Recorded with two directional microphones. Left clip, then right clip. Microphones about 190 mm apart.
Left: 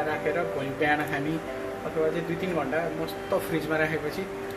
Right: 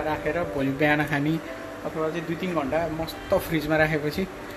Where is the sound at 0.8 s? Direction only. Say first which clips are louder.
Right 2 dB; 45° right (ahead or behind).